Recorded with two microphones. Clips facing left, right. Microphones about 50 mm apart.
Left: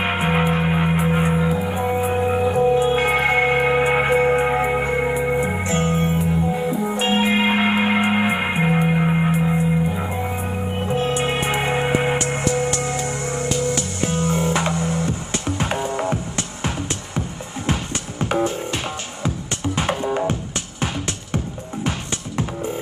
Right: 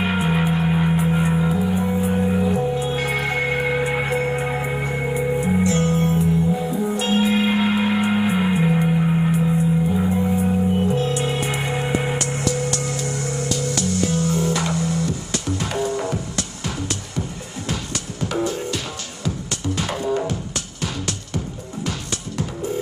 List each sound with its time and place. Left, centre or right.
0.0 s music: left
18.2 s music: left